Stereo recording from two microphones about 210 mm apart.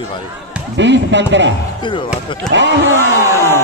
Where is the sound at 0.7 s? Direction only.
60° right (ahead or behind).